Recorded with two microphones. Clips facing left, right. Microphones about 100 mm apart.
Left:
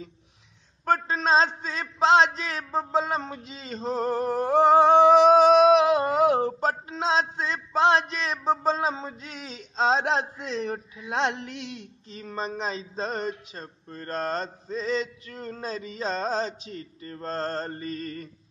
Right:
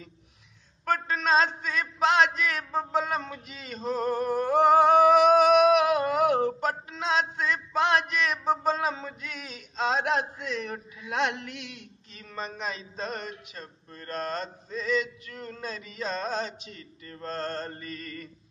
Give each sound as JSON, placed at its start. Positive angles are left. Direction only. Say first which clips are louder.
{"t": 0.8, "sound": "a man's voice", "louder": "left 3 dB", "side_deg": 30}